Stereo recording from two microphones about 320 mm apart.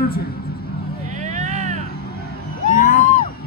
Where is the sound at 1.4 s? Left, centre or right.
Right.